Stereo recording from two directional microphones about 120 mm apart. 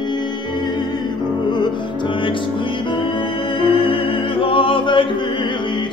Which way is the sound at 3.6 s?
45° left (ahead or behind).